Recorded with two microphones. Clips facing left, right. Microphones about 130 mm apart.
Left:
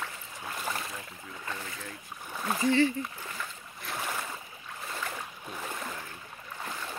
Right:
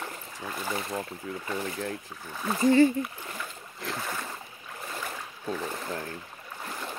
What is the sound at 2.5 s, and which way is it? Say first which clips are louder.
Horse: right 5 dB; 45° right (ahead or behind).